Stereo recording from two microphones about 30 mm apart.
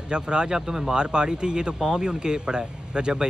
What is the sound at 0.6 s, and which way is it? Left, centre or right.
Speech, centre.